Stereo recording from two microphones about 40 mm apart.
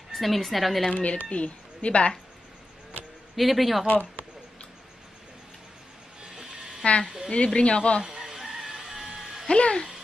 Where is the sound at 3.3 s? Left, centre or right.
Centre.